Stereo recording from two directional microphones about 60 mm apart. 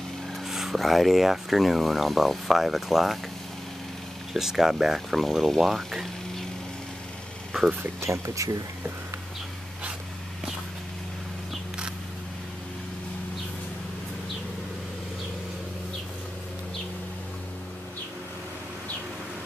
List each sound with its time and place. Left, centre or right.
0.5 s speech: centre
4.3 s speech: centre
7.8 s speech: right